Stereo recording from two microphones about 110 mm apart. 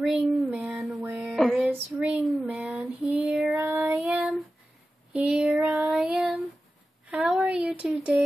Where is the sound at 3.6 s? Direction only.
20° right (ahead or behind).